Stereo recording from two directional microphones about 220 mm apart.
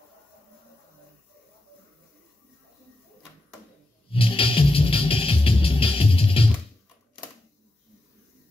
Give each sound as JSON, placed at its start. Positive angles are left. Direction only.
{"t": 4.1, "sound": "music", "side_deg": 25}